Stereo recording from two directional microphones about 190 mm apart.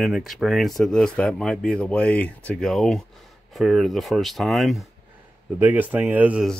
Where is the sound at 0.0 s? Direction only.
Centre (ahead or behind).